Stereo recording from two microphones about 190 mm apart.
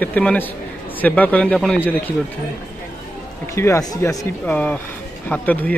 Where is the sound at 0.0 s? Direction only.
5° left (ahead or behind).